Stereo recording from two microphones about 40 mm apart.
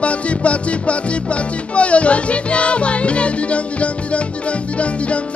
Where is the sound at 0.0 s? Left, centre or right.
Left.